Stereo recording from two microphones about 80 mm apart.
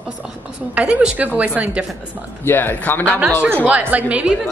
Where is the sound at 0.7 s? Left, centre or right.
Centre.